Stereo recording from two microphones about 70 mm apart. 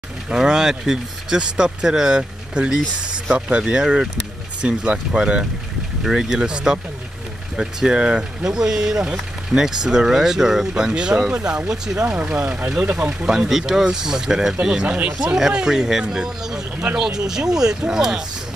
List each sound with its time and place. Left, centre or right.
0.3 s speech: centre
12.9 s speech: centre